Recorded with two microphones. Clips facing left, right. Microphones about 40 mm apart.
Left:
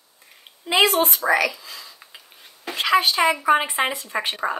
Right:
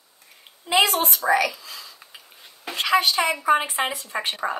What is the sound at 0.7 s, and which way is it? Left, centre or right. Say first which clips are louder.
Speech: left 2 dB; left.